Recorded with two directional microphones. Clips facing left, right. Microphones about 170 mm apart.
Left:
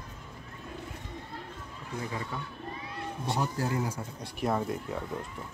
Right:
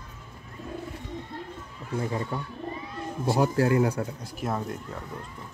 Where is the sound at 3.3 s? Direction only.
65° right (ahead or behind).